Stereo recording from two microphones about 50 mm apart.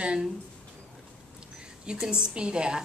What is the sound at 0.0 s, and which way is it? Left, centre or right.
Speech, centre.